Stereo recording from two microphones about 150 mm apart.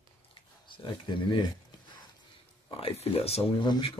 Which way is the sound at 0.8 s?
30° left (ahead or behind).